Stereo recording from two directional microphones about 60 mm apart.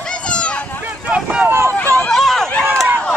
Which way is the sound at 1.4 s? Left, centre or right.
Right.